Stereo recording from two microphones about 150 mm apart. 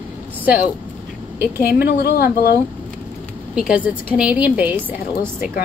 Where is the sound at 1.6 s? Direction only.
90° left.